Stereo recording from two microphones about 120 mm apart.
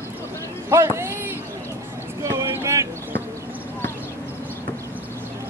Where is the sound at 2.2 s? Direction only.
25° right (ahead or behind).